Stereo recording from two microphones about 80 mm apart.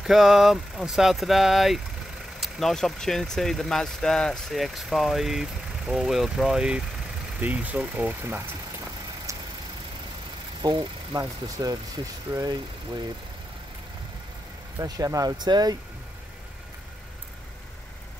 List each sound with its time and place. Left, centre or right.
0.0 s speech: centre
7.3 s speech: right
9.3 s vehicle: right
10.6 s speech: right
11.1 s speech: right
14.8 s speech: right